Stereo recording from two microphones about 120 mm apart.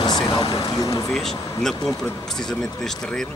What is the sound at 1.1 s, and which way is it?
A man's voice, 5° left (ahead or behind).